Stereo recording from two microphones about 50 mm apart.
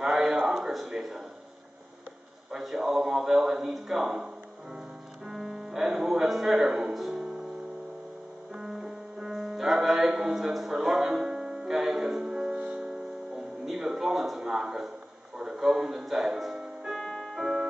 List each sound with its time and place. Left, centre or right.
0.0 s a sound: centre
2.5 s a man's voice: centre
4.7 s music: centre
6.2 s speech: centre
8.5 s music: centre
15.3 s speech: centre
16.5 s music: centre
16.9 s music: centre